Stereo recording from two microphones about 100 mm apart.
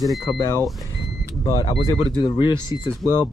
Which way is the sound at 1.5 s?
55° left (ahead or behind).